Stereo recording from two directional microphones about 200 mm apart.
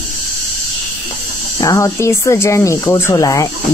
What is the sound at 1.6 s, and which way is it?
Speech, 15° left (ahead or behind).